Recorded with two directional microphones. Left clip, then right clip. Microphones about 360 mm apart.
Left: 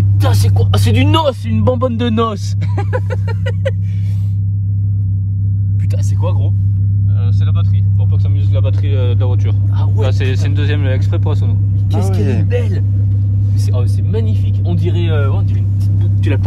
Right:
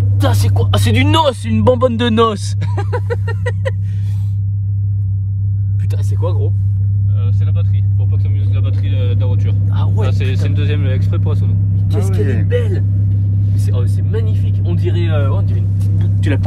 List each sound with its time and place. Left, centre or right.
0.4 s speech: right
8.5 s speech: centre
11.9 s speech: centre
16.3 s speech: right